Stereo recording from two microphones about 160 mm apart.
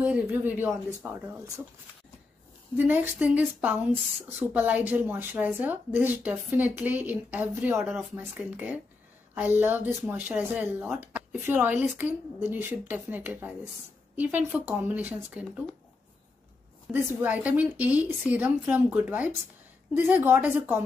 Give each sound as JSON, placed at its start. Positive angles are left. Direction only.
{"t": 0.0, "sound": "speech", "side_deg": -15}
{"t": 2.9, "sound": "speech", "side_deg": -10}
{"t": 16.9, "sound": "a woman's voice", "side_deg": 0}